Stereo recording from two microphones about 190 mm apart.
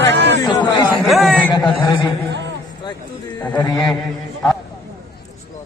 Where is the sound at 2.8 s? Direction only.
25° left (ahead or behind).